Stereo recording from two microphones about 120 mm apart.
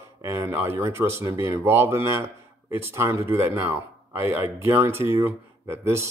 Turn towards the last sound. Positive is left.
turn(degrees=-20)  # may be behind; listen again after turning